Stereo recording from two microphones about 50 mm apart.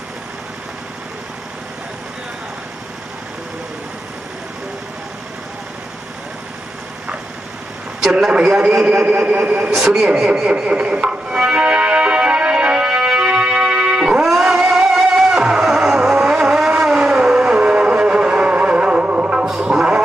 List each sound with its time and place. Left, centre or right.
8.0 s a man's voice: centre
8.7 s a man's voice: centre
9.0 s speech: right
9.6 s a man's voice: centre
10.5 s music: centre
14.2 s music: centre
16.2 s vehicle: centre
17.6 s music: right